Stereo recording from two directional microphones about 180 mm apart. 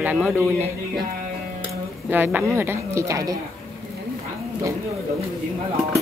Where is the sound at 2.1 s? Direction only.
10° right (ahead or behind).